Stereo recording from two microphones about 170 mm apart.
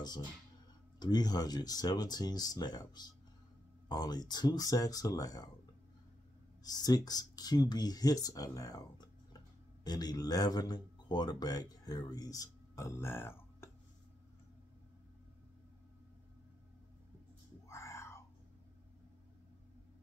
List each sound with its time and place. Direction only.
0.9 s speech: 25° left (ahead or behind)
6.6 s a man's voice: 25° left (ahead or behind)
17.6 s whispering: 15° left (ahead or behind)